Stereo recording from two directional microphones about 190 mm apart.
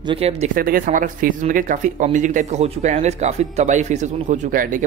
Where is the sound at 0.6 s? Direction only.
50° right (ahead or behind).